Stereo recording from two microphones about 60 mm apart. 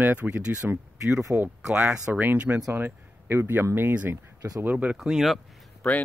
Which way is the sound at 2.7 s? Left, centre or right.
Right.